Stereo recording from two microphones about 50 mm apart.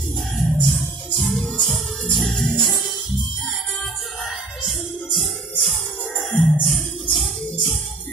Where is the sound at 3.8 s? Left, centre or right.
Centre.